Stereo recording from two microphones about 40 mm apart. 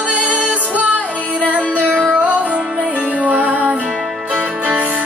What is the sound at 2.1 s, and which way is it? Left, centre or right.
Music, right.